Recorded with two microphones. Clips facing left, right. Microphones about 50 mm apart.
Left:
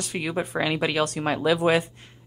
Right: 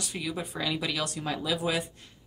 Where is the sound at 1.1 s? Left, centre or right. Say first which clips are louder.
Left 8 dB; left.